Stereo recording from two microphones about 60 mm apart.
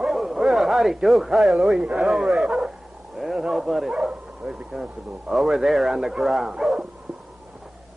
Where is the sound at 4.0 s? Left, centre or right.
Centre.